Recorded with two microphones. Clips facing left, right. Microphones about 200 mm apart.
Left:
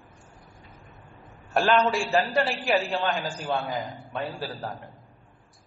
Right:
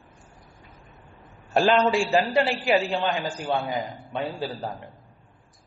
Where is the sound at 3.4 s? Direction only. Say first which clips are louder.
Right 2 dB; 20° right (ahead or behind).